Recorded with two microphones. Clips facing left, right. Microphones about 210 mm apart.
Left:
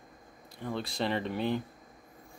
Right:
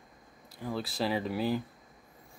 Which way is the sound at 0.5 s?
5° right (ahead or behind).